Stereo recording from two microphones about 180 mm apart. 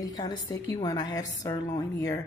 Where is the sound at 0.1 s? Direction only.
20° left (ahead or behind).